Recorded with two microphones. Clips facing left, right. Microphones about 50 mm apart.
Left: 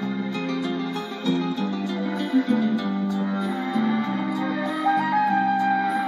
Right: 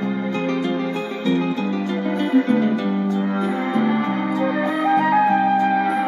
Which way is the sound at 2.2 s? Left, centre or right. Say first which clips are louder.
Right 4 dB; right.